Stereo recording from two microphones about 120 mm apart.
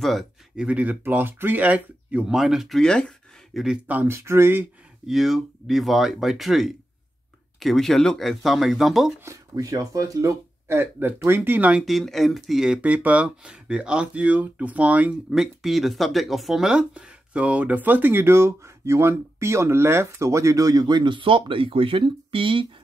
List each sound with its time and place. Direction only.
0.0 s speech: centre (ahead or behind)
3.5 s speech: 5° right (ahead or behind)
5.0 s speech: centre (ahead or behind)
9.2 s speech: 25° right (ahead or behind)
11.8 s speech: centre (ahead or behind); by 22.7 s 45° right (ahead or behind)